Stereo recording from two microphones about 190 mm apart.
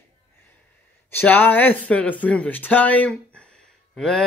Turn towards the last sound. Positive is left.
turn(degrees=5)  # may be behind; listen again after turning